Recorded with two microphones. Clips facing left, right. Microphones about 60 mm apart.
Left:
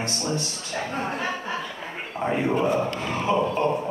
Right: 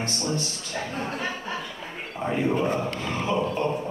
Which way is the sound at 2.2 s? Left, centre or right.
Left.